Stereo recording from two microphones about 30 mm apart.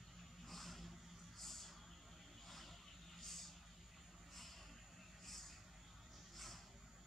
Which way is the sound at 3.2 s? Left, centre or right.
Centre.